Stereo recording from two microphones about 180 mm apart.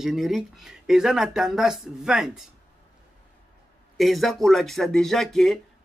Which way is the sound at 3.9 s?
Centre (ahead or behind).